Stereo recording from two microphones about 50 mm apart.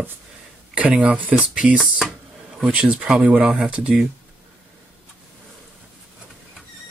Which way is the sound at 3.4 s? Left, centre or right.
Centre.